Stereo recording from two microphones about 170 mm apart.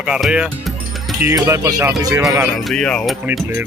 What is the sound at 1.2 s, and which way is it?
Speech, 15° right (ahead or behind).